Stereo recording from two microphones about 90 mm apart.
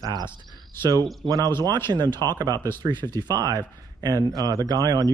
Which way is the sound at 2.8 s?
60° right (ahead or behind).